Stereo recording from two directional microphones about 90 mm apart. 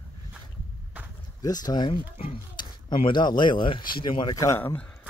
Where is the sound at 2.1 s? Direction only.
90° left.